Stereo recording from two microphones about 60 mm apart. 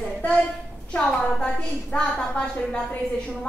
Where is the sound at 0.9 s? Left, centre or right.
Centre.